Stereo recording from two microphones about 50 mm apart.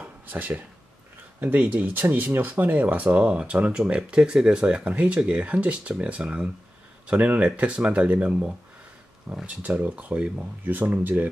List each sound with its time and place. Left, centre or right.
0.0 s a sound: right
1.6 s speech: right
10.6 s speech: right